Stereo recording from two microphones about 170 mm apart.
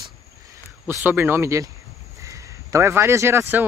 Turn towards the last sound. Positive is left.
turn(degrees=-15)  # may be behind; listen again after turning